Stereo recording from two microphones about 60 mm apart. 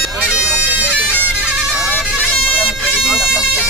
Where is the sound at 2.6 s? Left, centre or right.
Centre.